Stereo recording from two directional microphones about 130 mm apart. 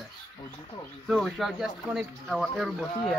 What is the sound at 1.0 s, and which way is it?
Speech, centre (ahead or behind).